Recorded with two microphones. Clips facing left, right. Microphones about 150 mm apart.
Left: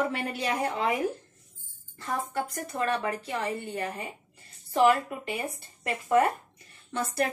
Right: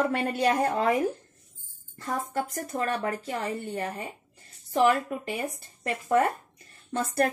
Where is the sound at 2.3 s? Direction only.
40° right (ahead or behind).